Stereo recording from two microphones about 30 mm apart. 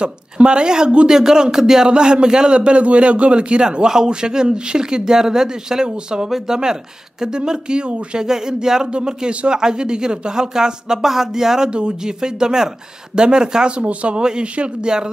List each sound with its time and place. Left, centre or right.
0.0 s a man's voice: right; by 1.9 s centre
1.9 s a man's voice: right
3.6 s speech: right
11.1 s a sound: centre
12.2 s speech: right
13.7 s a man's voice: right